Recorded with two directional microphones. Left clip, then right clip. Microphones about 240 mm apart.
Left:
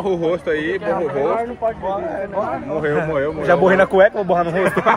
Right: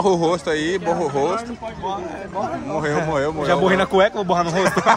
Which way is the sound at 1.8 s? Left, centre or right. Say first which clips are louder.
Left 4 dB; centre.